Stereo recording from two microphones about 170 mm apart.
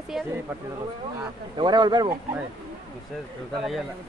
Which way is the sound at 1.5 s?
25° right (ahead or behind).